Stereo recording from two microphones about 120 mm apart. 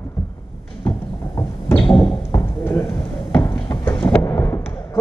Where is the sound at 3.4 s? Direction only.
30° left (ahead or behind).